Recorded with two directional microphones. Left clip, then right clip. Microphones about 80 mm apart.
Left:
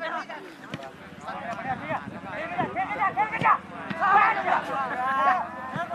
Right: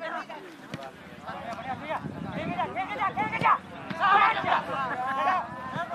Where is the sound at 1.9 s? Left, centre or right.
Right.